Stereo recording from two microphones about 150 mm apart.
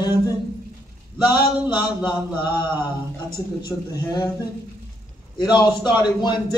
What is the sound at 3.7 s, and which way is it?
Speech, 20° left (ahead or behind).